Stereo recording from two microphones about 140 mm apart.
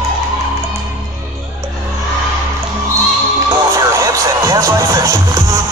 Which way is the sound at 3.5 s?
25° right (ahead or behind).